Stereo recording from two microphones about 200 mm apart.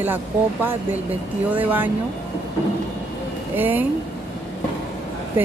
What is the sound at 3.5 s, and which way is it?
Speech, 10° right (ahead or behind).